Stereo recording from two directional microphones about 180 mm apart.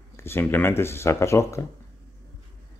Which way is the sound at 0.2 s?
10° left (ahead or behind).